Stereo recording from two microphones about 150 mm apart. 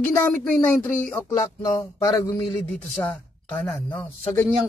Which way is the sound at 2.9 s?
10° left (ahead or behind).